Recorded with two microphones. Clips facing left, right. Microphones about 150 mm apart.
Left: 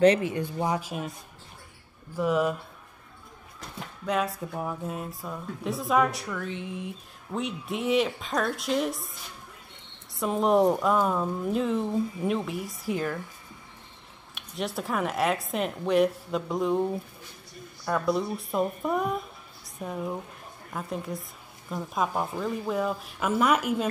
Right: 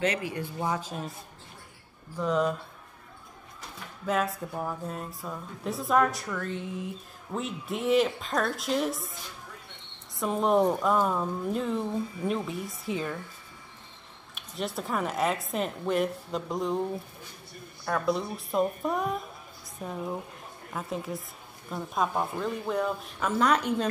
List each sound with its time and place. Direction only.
0.0 s speech: 25° left (ahead or behind); by 1.1 s 10° left (ahead or behind)
2.1 s speech: 10° left (ahead or behind)
4.0 s speech: centre (ahead or behind)
10.1 s speech: centre (ahead or behind)
14.3 s speech: centre (ahead or behind)
17.8 s speech: centre (ahead or behind)